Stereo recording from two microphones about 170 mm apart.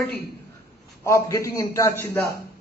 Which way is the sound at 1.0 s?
15° left (ahead or behind).